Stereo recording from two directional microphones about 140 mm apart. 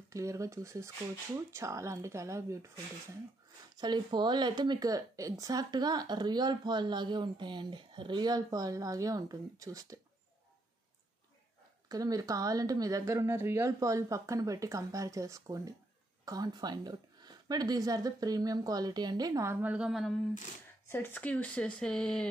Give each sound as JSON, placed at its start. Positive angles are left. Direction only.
{"t": 0.1, "sound": "speech", "side_deg": -25}
{"t": 3.7, "sound": "speech", "side_deg": -30}
{"t": 11.9, "sound": "speech", "side_deg": -25}
{"t": 20.9, "sound": "speech", "side_deg": 15}